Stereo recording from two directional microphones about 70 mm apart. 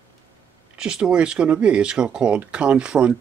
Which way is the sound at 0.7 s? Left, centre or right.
Centre.